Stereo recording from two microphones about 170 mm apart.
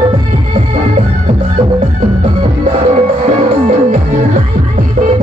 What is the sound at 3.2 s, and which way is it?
Music, 40° right (ahead or behind).